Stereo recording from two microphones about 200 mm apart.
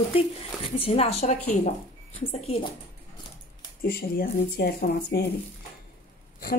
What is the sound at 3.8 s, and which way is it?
A woman's voice, 50° left (ahead or behind).